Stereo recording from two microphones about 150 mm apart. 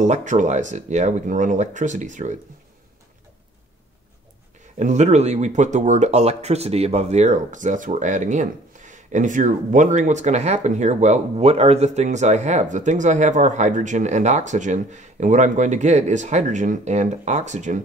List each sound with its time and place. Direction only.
0.0 s speech: 55° right (ahead or behind)
4.7 s speech: 50° right (ahead or behind)